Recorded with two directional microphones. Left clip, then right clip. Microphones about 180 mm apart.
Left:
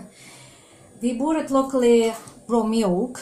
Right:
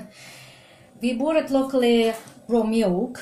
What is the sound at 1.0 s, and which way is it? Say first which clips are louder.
Speech: right 2 dB; 45° right (ahead or behind).